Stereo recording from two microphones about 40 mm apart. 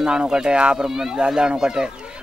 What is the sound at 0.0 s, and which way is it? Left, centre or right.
Speech, right.